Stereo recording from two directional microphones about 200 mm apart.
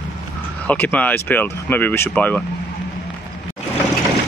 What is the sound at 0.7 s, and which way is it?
Speech, 5° left (ahead or behind).